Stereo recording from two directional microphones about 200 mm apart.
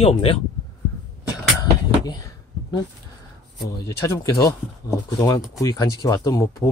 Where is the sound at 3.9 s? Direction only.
15° left (ahead or behind).